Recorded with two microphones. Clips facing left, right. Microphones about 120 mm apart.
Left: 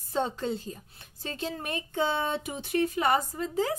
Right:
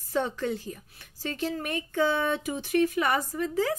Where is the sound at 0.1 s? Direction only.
25° left (ahead or behind).